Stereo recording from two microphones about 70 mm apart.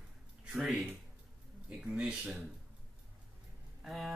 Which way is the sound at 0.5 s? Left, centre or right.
Centre.